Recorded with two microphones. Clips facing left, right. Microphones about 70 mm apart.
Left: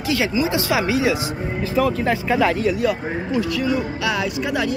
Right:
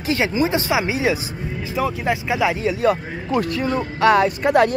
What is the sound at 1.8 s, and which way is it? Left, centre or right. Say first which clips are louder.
Speech: left 2 dB; centre.